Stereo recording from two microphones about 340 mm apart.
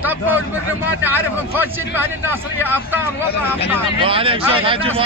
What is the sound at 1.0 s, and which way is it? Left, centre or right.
Speech, centre.